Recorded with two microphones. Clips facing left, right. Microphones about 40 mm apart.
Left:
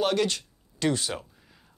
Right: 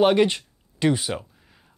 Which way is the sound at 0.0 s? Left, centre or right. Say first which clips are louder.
Right 7 dB; right.